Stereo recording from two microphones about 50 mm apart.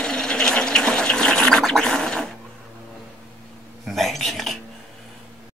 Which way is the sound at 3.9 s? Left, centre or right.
Centre.